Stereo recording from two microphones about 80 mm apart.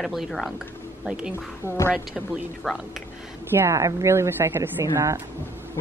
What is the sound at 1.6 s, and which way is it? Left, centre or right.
Speech, left.